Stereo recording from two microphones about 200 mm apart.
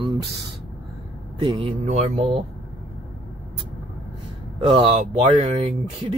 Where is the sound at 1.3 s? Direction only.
25° right (ahead or behind).